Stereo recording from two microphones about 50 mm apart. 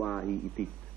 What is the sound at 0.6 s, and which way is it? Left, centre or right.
Music, centre.